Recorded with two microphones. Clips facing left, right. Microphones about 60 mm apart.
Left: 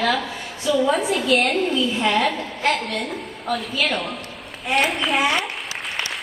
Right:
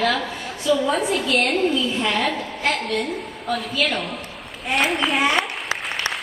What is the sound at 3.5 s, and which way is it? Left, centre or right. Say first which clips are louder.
A woman's voice: even; centre.